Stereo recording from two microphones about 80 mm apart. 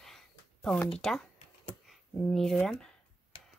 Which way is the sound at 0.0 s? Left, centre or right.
Centre.